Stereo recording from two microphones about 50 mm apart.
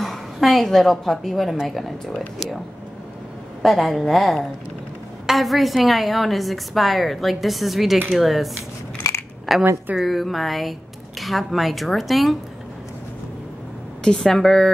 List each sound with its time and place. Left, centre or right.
0.0 s a woman's voice: centre
3.6 s a woman's voice: centre
9.0 s coin: left
9.5 s a woman's voice: centre
14.0 s a woman's voice: centre